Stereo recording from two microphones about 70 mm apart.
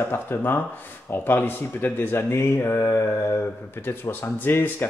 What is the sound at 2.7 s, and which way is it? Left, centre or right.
Mantra, left.